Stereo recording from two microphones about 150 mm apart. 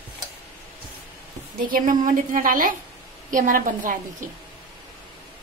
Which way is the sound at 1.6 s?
65° right (ahead or behind).